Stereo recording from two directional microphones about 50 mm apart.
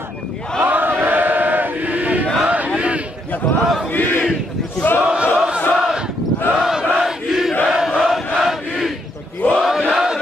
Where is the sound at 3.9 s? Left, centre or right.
Left.